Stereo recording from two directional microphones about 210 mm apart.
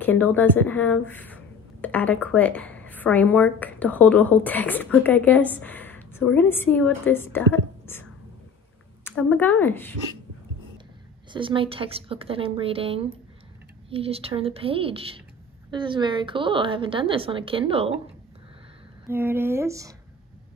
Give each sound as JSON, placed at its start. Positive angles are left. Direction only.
{"t": 0.0, "sound": "a woman's voice", "side_deg": 10}
{"t": 11.3, "sound": "a woman's voice", "side_deg": -25}
{"t": 19.0, "sound": "speech", "side_deg": -10}